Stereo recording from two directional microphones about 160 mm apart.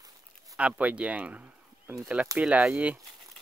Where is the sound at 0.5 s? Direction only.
10° right (ahead or behind).